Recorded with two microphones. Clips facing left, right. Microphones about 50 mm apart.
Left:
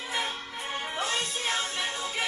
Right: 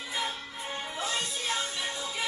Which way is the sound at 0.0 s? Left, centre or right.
Left.